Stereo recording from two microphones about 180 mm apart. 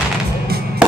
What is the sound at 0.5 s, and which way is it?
Music, 60° right (ahead or behind).